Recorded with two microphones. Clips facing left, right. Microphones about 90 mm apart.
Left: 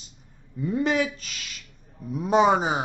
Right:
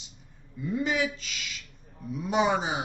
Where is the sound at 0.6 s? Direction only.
55° left (ahead or behind).